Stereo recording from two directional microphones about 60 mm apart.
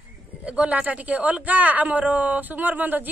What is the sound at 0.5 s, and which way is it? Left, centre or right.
Speech, right.